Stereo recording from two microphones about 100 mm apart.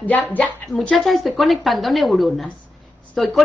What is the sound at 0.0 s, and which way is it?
Speech, 15° left (ahead or behind).